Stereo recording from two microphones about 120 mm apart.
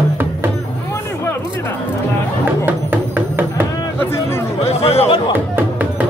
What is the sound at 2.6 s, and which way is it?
Music, 15° right (ahead or behind).